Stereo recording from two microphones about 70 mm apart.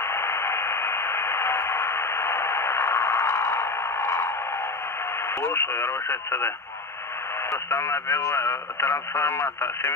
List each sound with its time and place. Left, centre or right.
0.0 s radio: left
5.4 s speech: left
7.5 s speech: left